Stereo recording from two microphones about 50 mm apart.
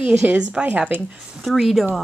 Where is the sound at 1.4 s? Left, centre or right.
Centre.